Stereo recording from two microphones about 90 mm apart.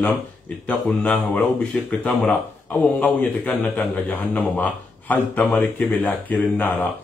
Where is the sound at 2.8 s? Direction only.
15° left (ahead or behind).